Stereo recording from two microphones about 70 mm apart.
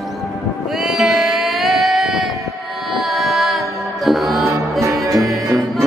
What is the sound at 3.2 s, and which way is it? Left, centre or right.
Music, centre.